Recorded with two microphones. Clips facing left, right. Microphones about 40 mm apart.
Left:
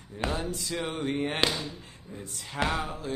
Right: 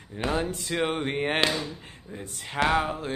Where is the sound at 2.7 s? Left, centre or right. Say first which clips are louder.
Right 6 dB; right.